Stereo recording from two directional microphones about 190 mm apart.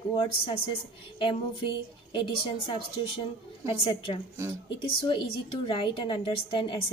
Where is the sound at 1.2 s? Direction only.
25° left (ahead or behind).